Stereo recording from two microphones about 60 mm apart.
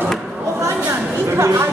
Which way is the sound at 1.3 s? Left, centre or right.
Right.